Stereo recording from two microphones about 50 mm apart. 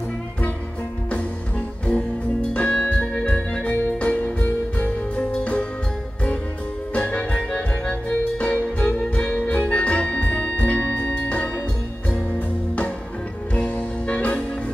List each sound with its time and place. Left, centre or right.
2.5 s music: left
6.9 s music: left
13.6 s music: left